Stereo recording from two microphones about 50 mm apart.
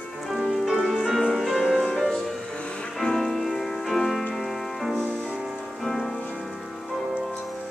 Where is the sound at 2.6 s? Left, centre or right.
Left.